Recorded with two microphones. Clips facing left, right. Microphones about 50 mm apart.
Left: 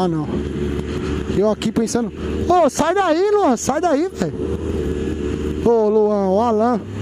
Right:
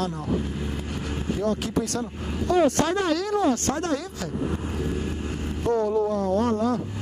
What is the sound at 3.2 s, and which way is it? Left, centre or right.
Speech, left.